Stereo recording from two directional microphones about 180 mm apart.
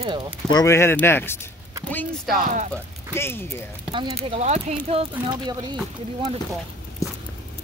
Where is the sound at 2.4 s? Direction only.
45° right (ahead or behind).